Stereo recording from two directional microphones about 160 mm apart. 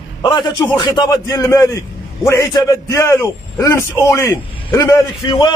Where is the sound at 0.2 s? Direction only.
30° left (ahead or behind).